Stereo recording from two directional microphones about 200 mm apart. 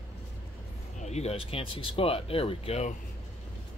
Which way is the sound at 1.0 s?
35° left (ahead or behind).